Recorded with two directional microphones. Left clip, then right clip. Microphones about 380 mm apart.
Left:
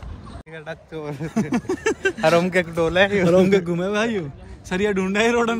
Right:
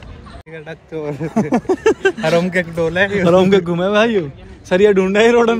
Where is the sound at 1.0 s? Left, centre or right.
Centre.